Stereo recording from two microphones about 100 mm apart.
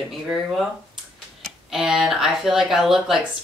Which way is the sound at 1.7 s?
5° right (ahead or behind).